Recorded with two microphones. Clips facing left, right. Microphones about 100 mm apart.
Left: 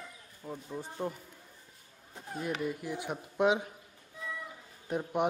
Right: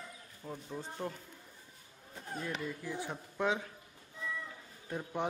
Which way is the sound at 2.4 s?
15° left (ahead or behind).